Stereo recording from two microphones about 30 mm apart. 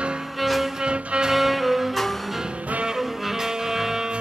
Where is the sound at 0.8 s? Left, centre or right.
Right.